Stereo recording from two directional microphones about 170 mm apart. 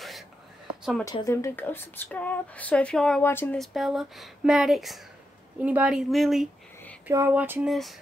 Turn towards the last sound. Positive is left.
turn(degrees=0)  # may be behind; listen again after turning